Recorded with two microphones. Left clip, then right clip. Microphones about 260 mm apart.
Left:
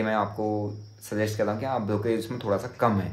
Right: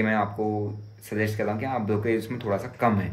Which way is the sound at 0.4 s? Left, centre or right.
Centre.